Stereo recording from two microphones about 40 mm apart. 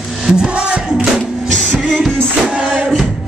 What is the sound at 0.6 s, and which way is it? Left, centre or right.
Music, right.